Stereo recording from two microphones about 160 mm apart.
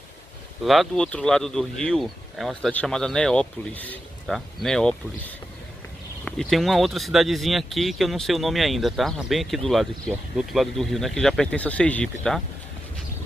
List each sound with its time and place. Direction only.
0.7 s speech: centre (ahead or behind)
6.2 s speech: centre (ahead or behind)